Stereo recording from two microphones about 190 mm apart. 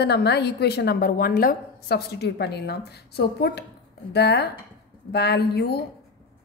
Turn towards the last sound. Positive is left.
turn(degrees=55)  # may be behind; listen again after turning